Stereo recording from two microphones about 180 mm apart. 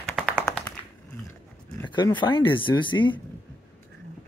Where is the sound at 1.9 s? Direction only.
25° left (ahead or behind).